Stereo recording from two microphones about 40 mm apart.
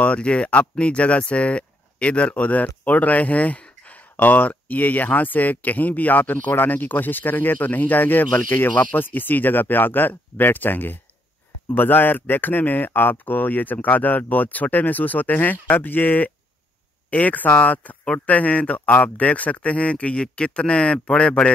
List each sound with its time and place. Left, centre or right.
0.0 s speech: left
8.3 s speech: left
8.7 s speech: left